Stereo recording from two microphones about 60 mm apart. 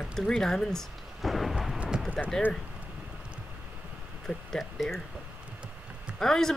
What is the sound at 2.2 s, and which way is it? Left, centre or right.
Speech, centre.